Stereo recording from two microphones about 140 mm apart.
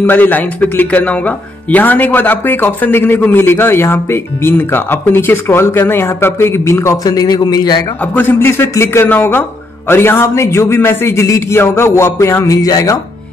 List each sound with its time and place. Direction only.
0.0 s speech: 10° left (ahead or behind); by 7.8 s 30° left (ahead or behind)
8.0 s speech: 10° left (ahead or behind)